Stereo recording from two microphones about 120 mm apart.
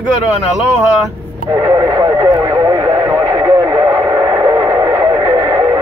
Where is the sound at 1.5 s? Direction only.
35° right (ahead or behind).